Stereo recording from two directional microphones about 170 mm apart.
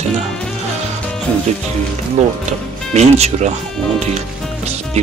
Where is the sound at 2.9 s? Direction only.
40° right (ahead or behind).